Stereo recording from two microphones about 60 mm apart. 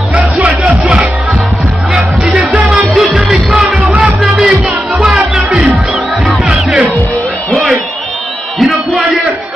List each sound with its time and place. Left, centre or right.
0.1 s music: right
2.3 s music: right
2.9 s music: centre
8.5 s a sound: centre